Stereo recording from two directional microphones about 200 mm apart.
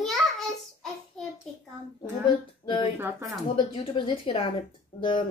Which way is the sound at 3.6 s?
25° left (ahead or behind).